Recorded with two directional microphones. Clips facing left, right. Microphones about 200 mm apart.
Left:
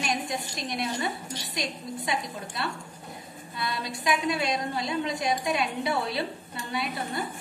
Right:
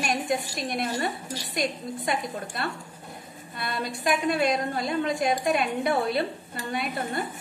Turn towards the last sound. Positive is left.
turn(degrees=-50)  # may be behind; listen again after turning